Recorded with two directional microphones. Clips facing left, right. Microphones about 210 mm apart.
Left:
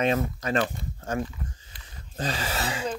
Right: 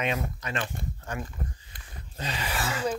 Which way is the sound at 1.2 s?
45° right (ahead or behind).